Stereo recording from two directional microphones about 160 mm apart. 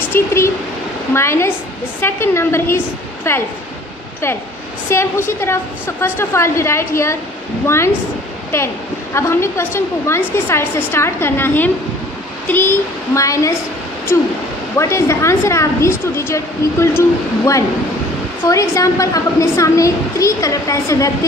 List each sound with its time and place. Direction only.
0.1 s a woman's voice: 15° left (ahead or behind)
4.8 s a woman's voice: 15° left (ahead or behind)
14.8 s a woman's voice: 20° left (ahead or behind)
18.4 s a woman's voice: 20° left (ahead or behind)